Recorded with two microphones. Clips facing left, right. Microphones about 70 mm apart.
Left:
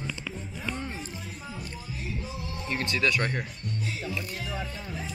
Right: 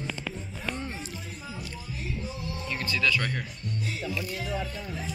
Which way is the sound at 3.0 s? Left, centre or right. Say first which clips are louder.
Even; left.